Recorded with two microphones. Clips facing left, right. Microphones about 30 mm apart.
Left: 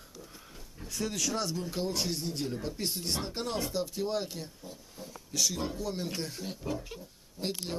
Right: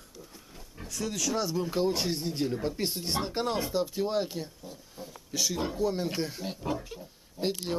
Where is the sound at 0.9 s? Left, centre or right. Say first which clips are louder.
Right 2 dB; centre.